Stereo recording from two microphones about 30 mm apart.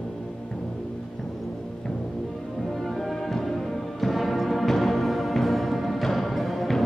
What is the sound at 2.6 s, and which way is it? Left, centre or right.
Music, centre.